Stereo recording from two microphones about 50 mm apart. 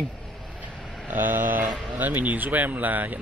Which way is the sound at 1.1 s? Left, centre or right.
Right.